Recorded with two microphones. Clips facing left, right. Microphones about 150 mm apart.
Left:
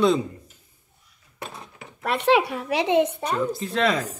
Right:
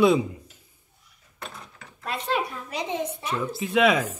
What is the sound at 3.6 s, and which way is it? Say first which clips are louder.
Speech: right 2 dB; 5° right (ahead or behind).